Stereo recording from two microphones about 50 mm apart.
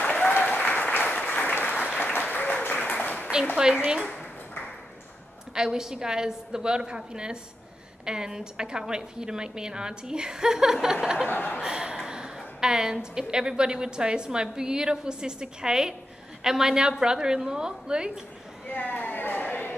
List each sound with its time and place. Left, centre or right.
0.0 s applause: left
3.5 s a woman's voice: centre
5.5 s a woman's voice: centre
11.2 s speech: left
11.6 s a woman's voice: centre
18.7 s a sound: left